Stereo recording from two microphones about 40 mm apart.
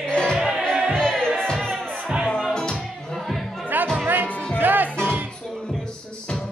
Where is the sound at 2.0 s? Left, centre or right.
Right.